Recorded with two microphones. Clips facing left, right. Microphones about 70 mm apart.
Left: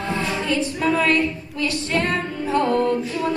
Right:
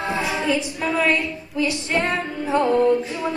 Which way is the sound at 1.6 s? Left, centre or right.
Centre.